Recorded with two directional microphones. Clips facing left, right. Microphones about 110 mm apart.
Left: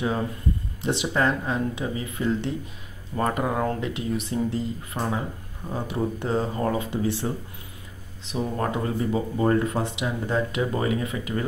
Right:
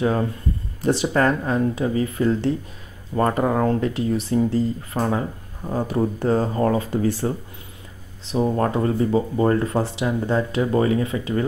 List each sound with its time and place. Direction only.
0.8 s speech: 45° right (ahead or behind)